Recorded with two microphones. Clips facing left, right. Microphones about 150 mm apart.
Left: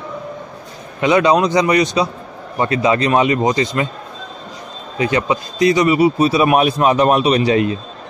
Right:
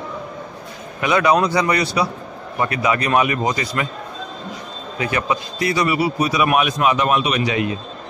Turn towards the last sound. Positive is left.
turn(degrees=35)  # may be behind; listen again after turning